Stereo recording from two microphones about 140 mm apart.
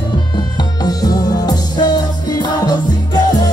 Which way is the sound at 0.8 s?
30° left (ahead or behind).